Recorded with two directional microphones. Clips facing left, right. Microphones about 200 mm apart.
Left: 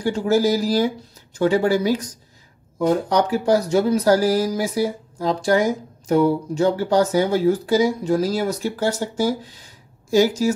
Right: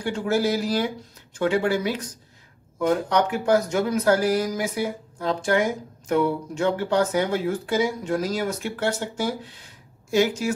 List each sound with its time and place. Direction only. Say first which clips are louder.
0.0 s speech: left 5 dB; 40° left (ahead or behind)